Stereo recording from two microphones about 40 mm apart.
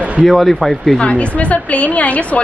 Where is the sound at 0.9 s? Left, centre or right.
Left.